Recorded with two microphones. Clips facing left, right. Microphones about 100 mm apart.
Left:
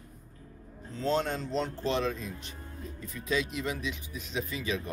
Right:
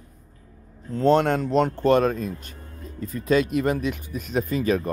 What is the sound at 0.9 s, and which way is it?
Speech, 60° right (ahead or behind).